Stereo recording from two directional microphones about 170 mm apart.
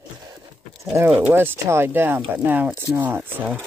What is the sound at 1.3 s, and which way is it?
Speech, 15° right (ahead or behind).